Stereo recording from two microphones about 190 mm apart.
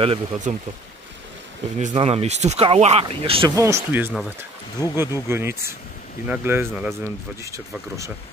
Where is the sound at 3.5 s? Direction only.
15° right (ahead or behind).